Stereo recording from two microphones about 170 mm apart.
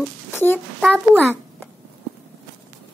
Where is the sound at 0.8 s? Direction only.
5° left (ahead or behind).